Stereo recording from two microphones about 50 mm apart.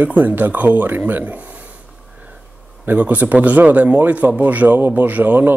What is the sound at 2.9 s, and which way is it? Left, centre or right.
A man's voice, right.